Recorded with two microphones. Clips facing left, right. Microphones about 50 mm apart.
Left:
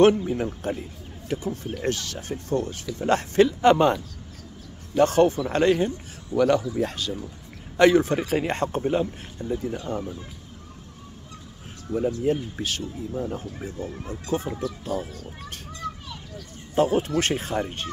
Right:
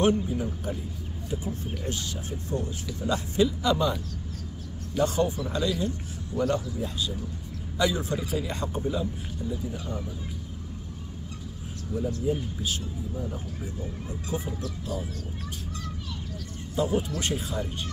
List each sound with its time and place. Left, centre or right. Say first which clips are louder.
0.0 s a man's voice: left 6 dB; left
1.3 s speech: left 5 dB; left
1.8 s a man's voice: left 5 dB; left
6.3 s a man's voice: left 7 dB; left
11.9 s speech: left 5 dB; left
13.1 s speech: left 5 dB; left
16.7 s speech: left 6 dB; left